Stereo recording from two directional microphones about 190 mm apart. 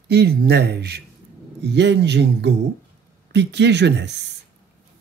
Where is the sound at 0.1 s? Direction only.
60° right (ahead or behind).